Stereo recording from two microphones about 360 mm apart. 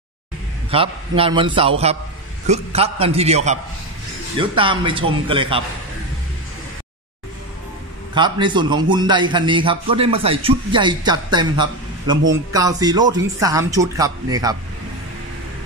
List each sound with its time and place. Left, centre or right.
0.7 s a man's voice: centre
8.1 s a man's voice: centre